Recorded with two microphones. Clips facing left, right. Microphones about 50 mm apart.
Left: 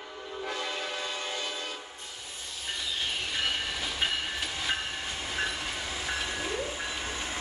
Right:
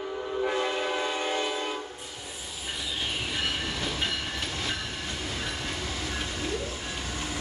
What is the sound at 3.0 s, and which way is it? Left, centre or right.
Train, centre.